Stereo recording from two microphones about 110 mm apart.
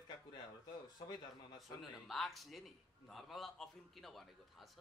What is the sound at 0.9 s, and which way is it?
Speech, 40° left (ahead or behind).